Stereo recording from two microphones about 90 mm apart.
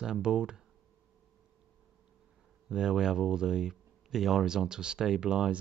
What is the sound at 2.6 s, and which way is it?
Speech, 10° right (ahead or behind).